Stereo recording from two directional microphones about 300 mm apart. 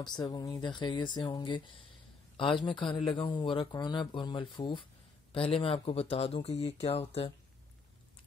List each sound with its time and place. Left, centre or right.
0.0 s a man's voice: centre